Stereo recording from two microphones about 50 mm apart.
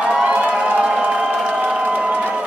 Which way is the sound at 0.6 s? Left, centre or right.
Centre.